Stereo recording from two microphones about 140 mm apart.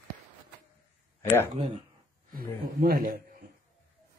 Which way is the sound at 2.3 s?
90° right.